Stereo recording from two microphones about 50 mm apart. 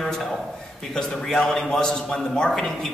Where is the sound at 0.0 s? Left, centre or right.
Centre.